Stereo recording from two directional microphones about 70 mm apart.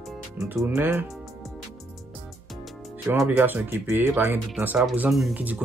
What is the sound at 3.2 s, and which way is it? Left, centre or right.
Speech, right.